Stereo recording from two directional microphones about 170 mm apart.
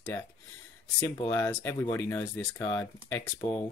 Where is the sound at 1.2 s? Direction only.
15° left (ahead or behind).